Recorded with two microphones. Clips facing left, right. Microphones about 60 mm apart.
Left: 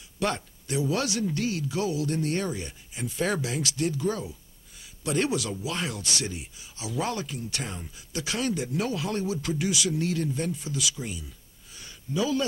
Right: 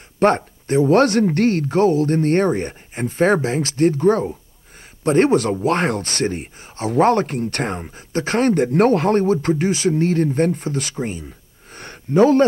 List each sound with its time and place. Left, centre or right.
0.2 s speech: right